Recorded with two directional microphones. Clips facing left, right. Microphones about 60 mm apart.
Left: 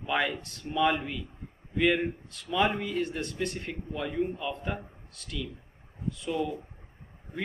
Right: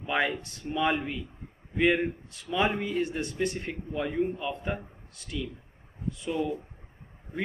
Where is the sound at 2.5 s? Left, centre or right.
Centre.